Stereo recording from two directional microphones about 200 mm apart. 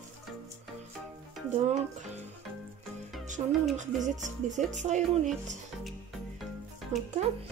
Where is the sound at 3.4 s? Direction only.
30° right (ahead or behind).